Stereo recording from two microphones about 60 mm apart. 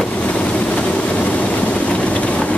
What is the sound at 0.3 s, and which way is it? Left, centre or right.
Vehicle, centre.